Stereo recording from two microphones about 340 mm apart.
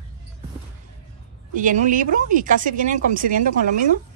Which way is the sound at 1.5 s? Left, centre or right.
Right.